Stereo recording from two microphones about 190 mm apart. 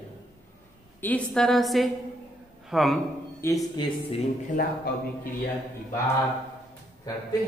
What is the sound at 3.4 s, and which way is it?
Speech, 15° left (ahead or behind).